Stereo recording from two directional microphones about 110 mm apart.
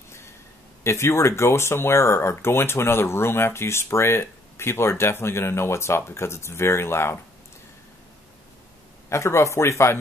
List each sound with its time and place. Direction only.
0.8 s speech: 25° left (ahead or behind)
9.1 s speech: 25° left (ahead or behind)